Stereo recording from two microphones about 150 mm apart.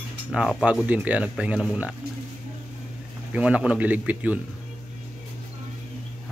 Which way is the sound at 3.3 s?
10° right (ahead or behind).